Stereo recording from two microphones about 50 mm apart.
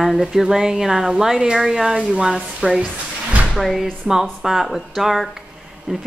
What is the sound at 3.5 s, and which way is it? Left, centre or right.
Speech, centre.